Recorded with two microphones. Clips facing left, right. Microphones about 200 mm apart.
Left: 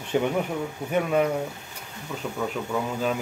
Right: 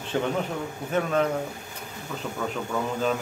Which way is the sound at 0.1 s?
15° left (ahead or behind).